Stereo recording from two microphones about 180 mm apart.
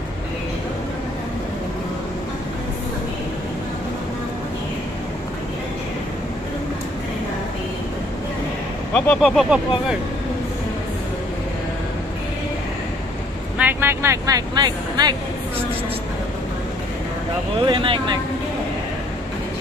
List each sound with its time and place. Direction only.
8.9 s speech: 5° left (ahead or behind)
13.6 s speech: 10° right (ahead or behind)
17.6 s speech: 30° right (ahead or behind)